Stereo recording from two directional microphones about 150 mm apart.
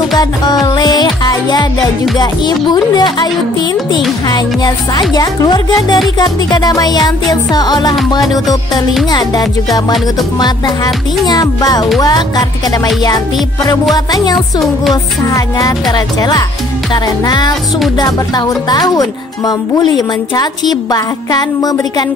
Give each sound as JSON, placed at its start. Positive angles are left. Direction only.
{"t": 0.7, "sound": "music", "side_deg": 25}
{"t": 4.3, "sound": "speech", "side_deg": 25}
{"t": 11.2, "sound": "speech", "side_deg": 25}